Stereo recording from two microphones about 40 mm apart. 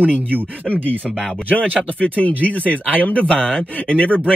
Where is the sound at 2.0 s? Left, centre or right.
Left.